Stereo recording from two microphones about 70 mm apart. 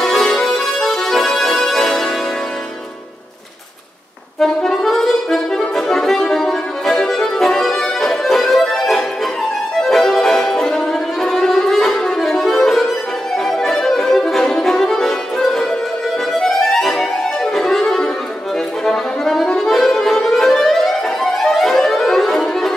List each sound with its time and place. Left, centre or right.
0.0 s music: centre
4.4 s music: centre
9.8 s violin: centre
13.4 s music: centre
18.9 s accordion: centre